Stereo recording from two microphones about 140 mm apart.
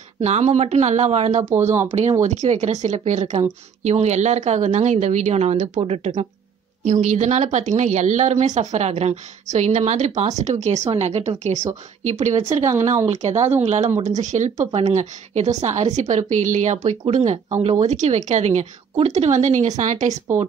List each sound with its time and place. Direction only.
0.2 s speech: 55° right (ahead or behind)
1.4 s speech: 20° right (ahead or behind)
1.9 s a woman's voice: 50° right (ahead or behind)